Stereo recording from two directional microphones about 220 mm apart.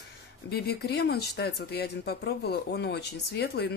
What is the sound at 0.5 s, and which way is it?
Speech, 45° left (ahead or behind).